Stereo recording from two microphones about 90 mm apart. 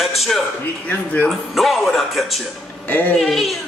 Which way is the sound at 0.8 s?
20° left (ahead or behind).